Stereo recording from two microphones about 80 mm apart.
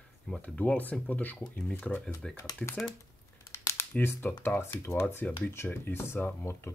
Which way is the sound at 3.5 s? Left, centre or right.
Left.